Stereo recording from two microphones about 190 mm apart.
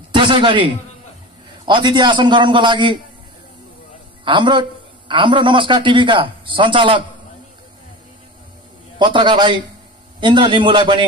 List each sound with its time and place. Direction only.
0.1 s a man's voice: 25° right (ahead or behind)
1.7 s a man's voice: 25° right (ahead or behind)
4.2 s a man's voice: 25° right (ahead or behind)
8.9 s a man's voice: 25° right (ahead or behind)